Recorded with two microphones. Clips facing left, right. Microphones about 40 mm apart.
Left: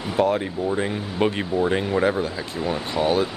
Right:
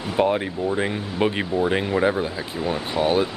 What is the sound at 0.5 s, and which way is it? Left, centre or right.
Speech, centre.